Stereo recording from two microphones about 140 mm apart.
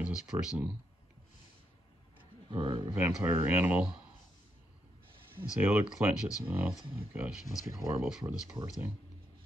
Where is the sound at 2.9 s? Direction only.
10° right (ahead or behind).